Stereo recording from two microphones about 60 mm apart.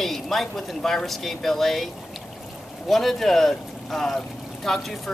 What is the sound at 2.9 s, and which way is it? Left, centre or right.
Speech, centre.